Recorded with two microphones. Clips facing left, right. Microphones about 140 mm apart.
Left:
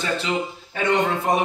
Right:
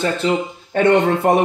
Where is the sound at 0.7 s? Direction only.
60° right (ahead or behind).